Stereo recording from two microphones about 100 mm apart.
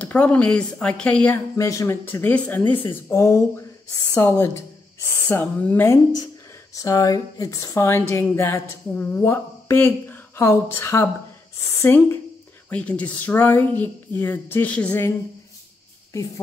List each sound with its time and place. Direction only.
0.0 s a woman's voice: 15° left (ahead or behind)
1.6 s speech: 30° left (ahead or behind)
6.7 s speech: 35° left (ahead or behind)
12.6 s a woman's voice: 15° left (ahead or behind)